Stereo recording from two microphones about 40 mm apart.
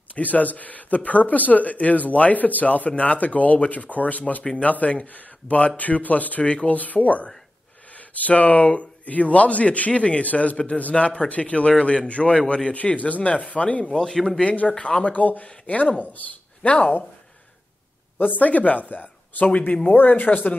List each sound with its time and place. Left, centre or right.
0.1 s speech: left
6.4 s speech: left
13.8 s speech: centre
14.4 s speech: left
15.1 s speech: left
18.2 s speech: left